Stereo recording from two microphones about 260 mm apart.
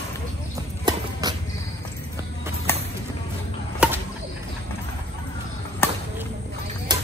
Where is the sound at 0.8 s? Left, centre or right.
Centre.